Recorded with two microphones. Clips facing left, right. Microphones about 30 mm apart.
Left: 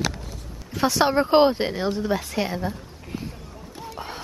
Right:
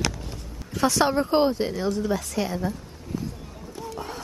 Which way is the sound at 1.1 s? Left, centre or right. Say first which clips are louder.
Left 4 dB; left.